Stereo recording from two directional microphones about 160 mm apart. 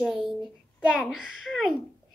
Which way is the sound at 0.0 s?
5° right (ahead or behind).